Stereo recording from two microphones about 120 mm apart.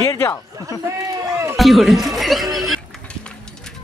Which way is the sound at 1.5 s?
Centre (ahead or behind).